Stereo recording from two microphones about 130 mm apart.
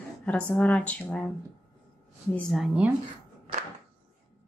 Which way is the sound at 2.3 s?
Centre (ahead or behind).